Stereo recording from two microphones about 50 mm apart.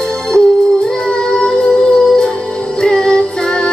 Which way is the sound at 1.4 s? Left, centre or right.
Left.